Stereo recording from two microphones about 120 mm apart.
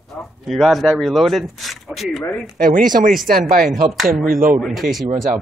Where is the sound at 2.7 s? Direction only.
90° right.